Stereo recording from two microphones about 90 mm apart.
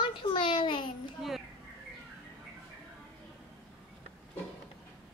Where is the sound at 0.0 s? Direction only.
65° left (ahead or behind).